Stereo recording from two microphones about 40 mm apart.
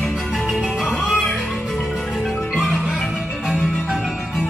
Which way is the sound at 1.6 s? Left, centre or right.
Centre.